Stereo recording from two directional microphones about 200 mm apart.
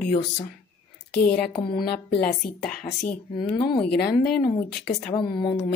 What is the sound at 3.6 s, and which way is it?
Speech, 25° left (ahead or behind).